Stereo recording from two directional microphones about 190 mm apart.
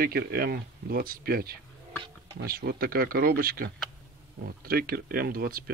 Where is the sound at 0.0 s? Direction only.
55° right (ahead or behind).